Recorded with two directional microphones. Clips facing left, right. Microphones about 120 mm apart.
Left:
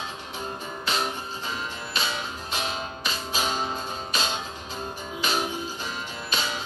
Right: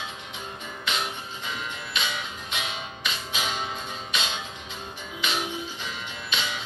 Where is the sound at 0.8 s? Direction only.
35° left (ahead or behind).